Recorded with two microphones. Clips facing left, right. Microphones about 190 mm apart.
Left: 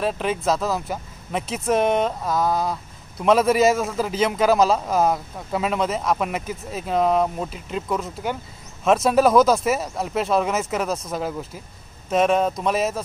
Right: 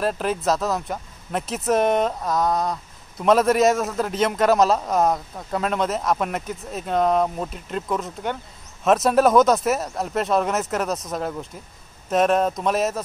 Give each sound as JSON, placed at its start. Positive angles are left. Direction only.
{"t": 0.0, "sound": "speech", "side_deg": 0}